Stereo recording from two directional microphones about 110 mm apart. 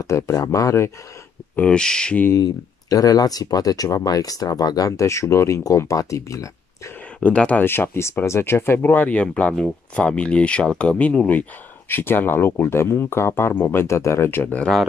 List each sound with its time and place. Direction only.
0.0 s speech: 30° left (ahead or behind)
1.6 s speech: 10° left (ahead or behind)
2.3 s speech: 35° left (ahead or behind)
7.2 s speech: 10° left (ahead or behind)